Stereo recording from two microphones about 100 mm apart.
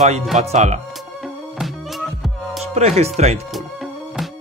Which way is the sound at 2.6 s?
90° right.